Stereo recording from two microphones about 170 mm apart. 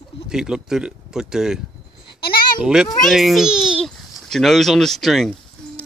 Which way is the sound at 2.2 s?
65° left (ahead or behind).